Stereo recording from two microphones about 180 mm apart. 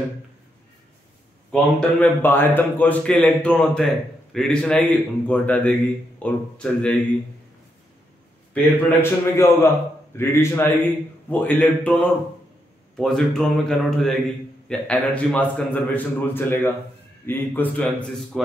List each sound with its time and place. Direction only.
1.5 s a man's voice: 5° left (ahead or behind)
9.0 s a man's voice: 15° left (ahead or behind)